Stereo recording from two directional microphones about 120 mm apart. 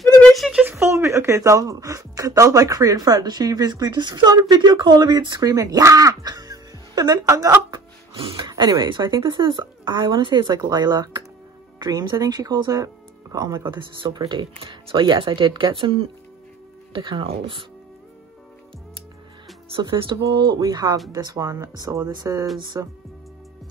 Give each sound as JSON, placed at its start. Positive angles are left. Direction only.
{"t": 0.2, "sound": "a sound", "side_deg": 0}
{"t": 0.7, "sound": "speech", "side_deg": -25}
{"t": 8.1, "sound": "speech", "side_deg": -45}
{"t": 19.7, "sound": "speech", "side_deg": -45}